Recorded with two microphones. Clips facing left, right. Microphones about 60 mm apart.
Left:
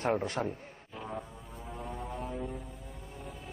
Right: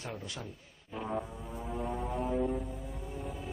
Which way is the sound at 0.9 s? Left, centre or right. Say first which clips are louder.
Right 5 dB; centre.